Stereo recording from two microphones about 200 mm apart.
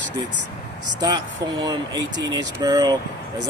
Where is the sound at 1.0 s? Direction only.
20° right (ahead or behind).